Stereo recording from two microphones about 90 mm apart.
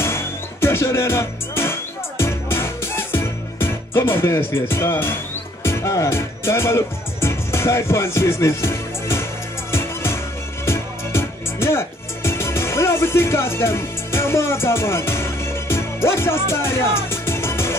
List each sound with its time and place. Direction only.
0.0 s music: 30° left (ahead or behind)